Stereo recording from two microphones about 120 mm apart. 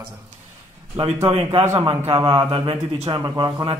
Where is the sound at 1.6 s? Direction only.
20° right (ahead or behind).